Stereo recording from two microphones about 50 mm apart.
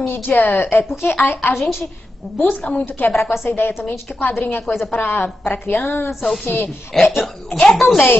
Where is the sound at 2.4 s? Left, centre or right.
Left.